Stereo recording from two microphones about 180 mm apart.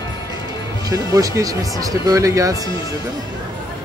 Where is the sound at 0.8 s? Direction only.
20° right (ahead or behind).